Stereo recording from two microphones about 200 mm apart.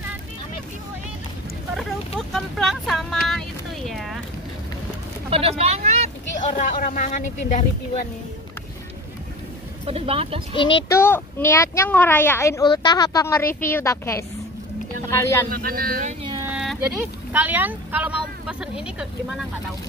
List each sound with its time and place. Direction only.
1.8 s vehicle: centre (ahead or behind)
3.3 s a sound: centre (ahead or behind)
5.3 s vehicle: 30° right (ahead or behind)
6.3 s speech: 40° left (ahead or behind)
9.8 s speech: 30° right (ahead or behind)
10.5 s speech: 25° left (ahead or behind)
11.0 s speech: 10° left (ahead or behind)
15.5 s speech: 45° right (ahead or behind)
16.3 s a sound: 15° right (ahead or behind)
17.3 s speech: 10° right (ahead or behind)